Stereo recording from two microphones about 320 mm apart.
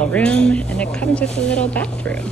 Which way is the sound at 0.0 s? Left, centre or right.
Centre.